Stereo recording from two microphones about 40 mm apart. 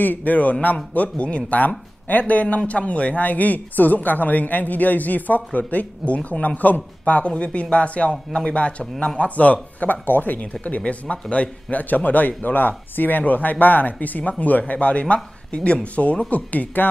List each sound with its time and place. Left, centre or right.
0.0 s speech: left
10.0 s speech: left
10.4 s speech: left
11.7 s speech: left